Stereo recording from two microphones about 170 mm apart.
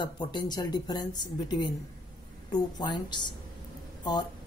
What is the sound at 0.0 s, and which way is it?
Speech, 25° left (ahead or behind).